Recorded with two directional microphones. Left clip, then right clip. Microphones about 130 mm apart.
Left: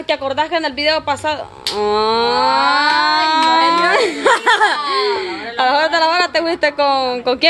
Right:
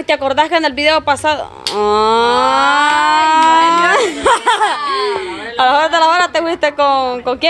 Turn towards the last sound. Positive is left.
turn(degrees=20)  # may be behind; listen again after turning